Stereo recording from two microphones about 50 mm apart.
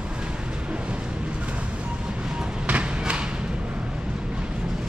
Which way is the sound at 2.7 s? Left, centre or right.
Right.